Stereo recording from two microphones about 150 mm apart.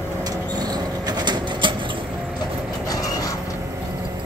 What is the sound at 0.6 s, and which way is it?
Train, 25° right (ahead or behind).